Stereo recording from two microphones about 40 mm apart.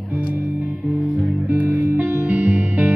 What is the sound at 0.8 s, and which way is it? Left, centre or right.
Music, right.